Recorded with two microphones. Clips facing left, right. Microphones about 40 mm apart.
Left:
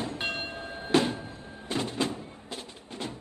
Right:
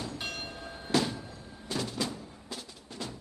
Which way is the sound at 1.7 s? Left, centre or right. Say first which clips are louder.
Left 4 dB; left.